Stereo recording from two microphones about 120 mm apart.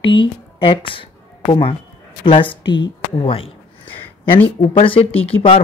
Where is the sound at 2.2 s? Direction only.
45° left (ahead or behind).